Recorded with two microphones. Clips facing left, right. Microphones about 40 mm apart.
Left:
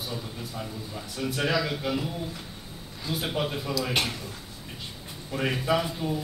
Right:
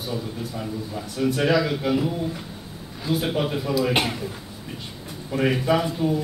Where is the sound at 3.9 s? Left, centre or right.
Centre.